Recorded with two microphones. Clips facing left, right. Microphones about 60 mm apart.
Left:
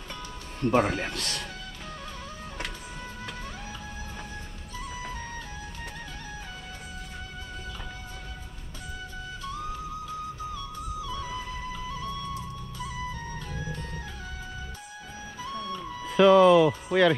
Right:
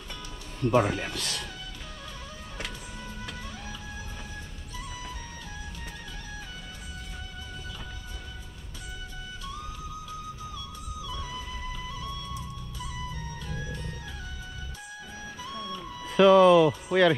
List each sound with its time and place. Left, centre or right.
0.7 s speech: left
15.4 s music: left
16.0 s music: centre